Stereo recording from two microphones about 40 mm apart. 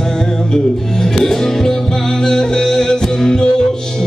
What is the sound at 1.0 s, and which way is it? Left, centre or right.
Music, centre.